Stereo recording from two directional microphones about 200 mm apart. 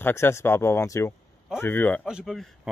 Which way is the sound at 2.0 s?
Centre (ahead or behind).